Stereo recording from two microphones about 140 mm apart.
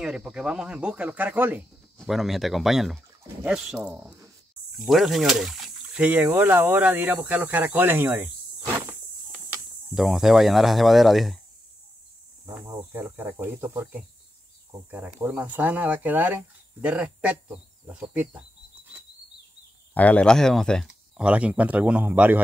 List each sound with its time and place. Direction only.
0.0 s speech: 5° right (ahead or behind)
2.0 s speech: centre (ahead or behind)
9.9 s speech: centre (ahead or behind)
12.5 s speech: 25° right (ahead or behind)
12.9 s speech: 15° right (ahead or behind)
14.9 s speech: 10° right (ahead or behind)
19.9 s speech: 10° left (ahead or behind)
21.2 s speech: 10° right (ahead or behind)